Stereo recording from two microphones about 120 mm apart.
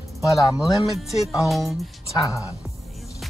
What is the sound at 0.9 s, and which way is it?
Speech, centre (ahead or behind).